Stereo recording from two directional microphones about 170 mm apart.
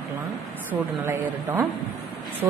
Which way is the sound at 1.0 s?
15° right (ahead or behind).